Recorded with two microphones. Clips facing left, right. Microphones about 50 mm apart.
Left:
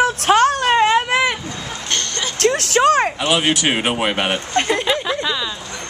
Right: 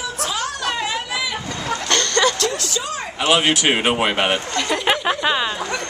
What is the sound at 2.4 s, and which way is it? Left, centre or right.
Vehicle, left.